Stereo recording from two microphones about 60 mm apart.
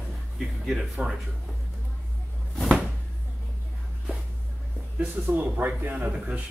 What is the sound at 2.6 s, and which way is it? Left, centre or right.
Cupboard open or close, centre.